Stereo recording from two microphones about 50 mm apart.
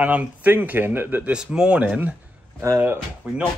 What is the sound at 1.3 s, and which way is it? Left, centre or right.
Speech, centre.